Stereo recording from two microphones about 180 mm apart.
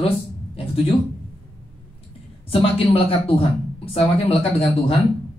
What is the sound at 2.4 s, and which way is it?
Speech, 30° left (ahead or behind).